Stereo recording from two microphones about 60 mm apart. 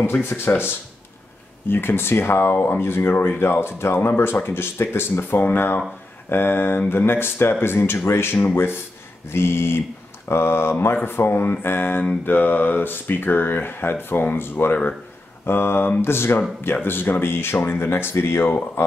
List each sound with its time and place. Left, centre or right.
0.0 s speech: left
17.8 s speech: left